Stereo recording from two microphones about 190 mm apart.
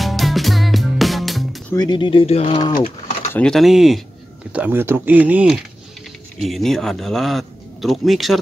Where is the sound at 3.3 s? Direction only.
5° left (ahead or behind).